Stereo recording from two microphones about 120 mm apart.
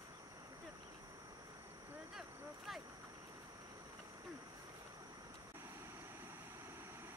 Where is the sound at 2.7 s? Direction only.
Centre (ahead or behind).